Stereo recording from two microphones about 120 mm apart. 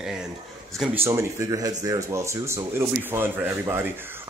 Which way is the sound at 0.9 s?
20° right (ahead or behind).